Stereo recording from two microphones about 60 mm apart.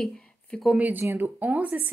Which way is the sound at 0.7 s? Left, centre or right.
Right.